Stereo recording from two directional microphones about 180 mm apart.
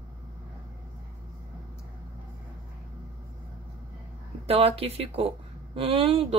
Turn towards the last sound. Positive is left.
turn(degrees=-30)  # may be behind; listen again after turning